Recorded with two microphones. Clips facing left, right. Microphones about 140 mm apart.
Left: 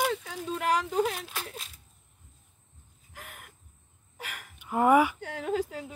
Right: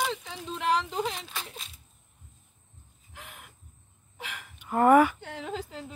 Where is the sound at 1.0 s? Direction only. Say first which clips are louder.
Left 2 dB; 5° left (ahead or behind).